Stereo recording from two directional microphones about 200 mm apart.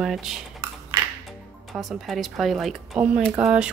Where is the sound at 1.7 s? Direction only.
Centre (ahead or behind).